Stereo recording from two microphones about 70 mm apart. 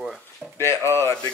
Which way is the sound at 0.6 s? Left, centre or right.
Left.